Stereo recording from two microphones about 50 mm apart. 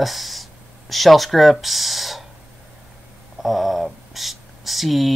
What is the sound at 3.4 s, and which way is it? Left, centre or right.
Speech, centre.